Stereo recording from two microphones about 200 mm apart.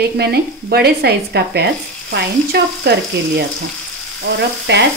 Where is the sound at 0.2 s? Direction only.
55° right (ahead or behind).